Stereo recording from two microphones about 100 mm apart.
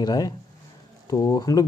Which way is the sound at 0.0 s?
40° left (ahead or behind).